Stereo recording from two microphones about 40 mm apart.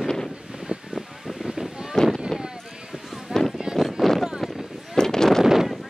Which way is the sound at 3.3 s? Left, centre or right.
Centre.